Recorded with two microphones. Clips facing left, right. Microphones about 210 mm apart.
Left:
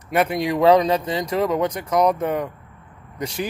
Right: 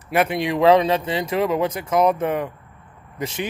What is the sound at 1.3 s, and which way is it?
Speech, 5° right (ahead or behind).